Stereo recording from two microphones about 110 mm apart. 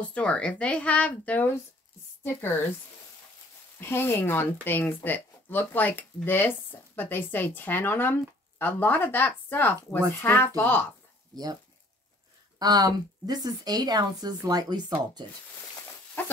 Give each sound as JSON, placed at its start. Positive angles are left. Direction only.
{"t": 0.0, "sound": "speech", "side_deg": 10}
{"t": 3.8, "sound": "speech", "side_deg": 20}
{"t": 12.5, "sound": "a woman's voice", "side_deg": -35}